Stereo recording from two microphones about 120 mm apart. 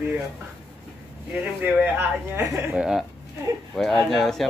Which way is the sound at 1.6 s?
15° right (ahead or behind).